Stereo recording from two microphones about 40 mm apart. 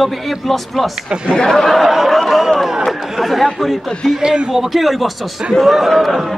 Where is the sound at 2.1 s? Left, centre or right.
Centre.